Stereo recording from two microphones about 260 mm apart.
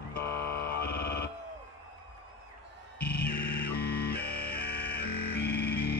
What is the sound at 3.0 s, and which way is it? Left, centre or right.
Music, left.